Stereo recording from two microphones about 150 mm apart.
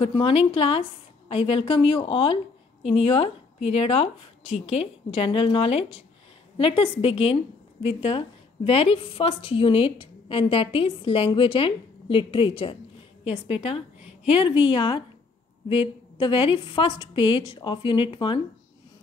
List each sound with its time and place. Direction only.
0.0 s a woman's voice: 35° left (ahead or behind)